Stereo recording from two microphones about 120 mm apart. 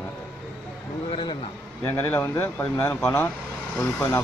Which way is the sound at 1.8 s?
20° left (ahead or behind).